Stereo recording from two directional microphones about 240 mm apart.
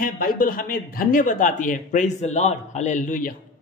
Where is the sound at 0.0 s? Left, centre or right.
Left.